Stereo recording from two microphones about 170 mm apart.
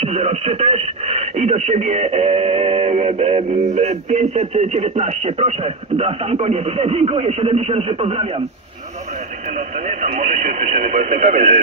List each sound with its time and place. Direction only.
0.0 s speech: 40° right (ahead or behind)
9.8 s speech: 45° right (ahead or behind)